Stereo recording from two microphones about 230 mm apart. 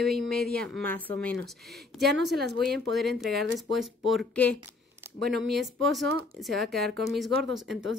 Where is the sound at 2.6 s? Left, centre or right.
Centre.